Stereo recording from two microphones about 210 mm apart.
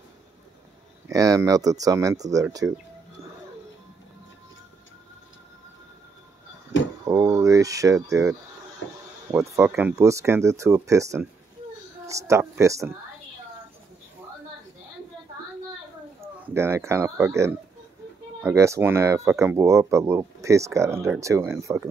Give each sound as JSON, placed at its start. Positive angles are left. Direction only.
{"t": 1.0, "sound": "speech", "side_deg": -15}
{"t": 7.1, "sound": "a sound", "side_deg": -15}
{"t": 9.3, "sound": "speech", "side_deg": -10}
{"t": 16.5, "sound": "speech", "side_deg": -10}